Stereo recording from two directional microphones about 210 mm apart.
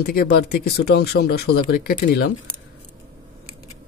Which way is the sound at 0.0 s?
45° left (ahead or behind).